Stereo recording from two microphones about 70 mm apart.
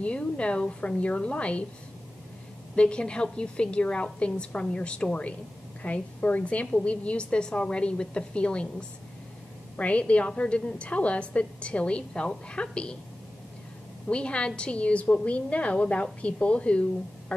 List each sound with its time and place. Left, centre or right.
0.0 s a woman's voice: centre
2.7 s a woman's voice: centre
14.0 s a woman's voice: centre